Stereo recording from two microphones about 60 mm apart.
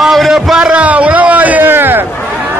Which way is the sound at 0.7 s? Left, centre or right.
Right.